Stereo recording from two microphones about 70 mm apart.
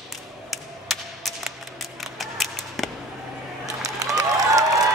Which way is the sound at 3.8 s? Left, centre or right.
Right.